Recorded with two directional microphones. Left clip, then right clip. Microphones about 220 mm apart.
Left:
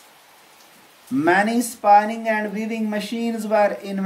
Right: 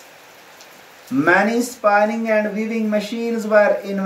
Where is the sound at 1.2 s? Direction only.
35° left (ahead or behind).